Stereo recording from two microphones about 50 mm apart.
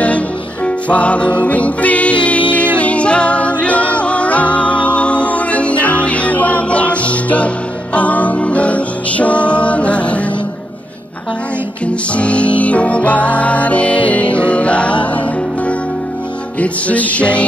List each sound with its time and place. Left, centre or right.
0.7 s music: left
12.2 s music: left
16.5 s music: left